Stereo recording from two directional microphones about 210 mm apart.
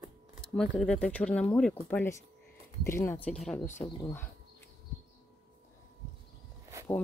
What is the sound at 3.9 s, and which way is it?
Speech, 15° left (ahead or behind).